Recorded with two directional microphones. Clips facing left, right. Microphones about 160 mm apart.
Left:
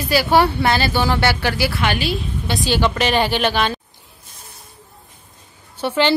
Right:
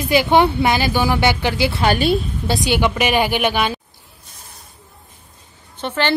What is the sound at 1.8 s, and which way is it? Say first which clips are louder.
Speech: right 5 dB; 40° right (ahead or behind).